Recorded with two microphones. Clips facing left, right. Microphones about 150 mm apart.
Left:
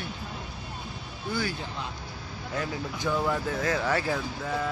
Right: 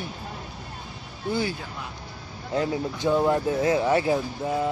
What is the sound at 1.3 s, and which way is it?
Speech, 20° right (ahead or behind).